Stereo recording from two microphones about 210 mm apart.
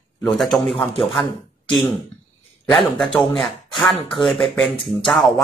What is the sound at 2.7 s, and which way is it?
Speech, centre (ahead or behind).